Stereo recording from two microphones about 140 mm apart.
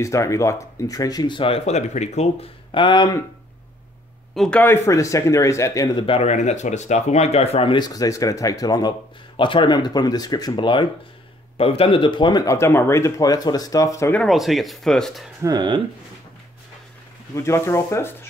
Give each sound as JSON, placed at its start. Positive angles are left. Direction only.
{"t": 0.0, "sound": "speech", "side_deg": 20}
{"t": 2.7, "sound": "speech", "side_deg": 35}
{"t": 4.4, "sound": "speech", "side_deg": 10}
{"t": 12.5, "sound": "speech", "side_deg": 20}
{"t": 14.1, "sound": "speech", "side_deg": 0}
{"t": 15.4, "sound": "speech", "side_deg": -30}
{"t": 17.4, "sound": "speech", "side_deg": 20}